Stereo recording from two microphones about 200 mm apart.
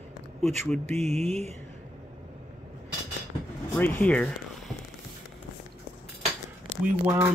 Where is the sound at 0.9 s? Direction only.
30° right (ahead or behind).